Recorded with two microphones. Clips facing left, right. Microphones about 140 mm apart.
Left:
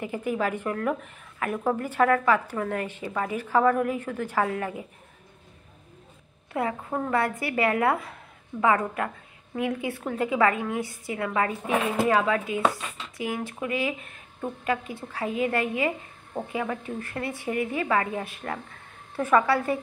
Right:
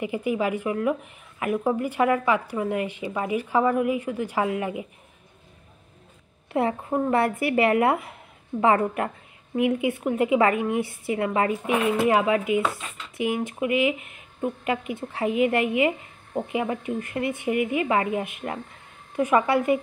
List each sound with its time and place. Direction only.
0.0 s speech: 10° right (ahead or behind)
6.5 s speech: 25° right (ahead or behind)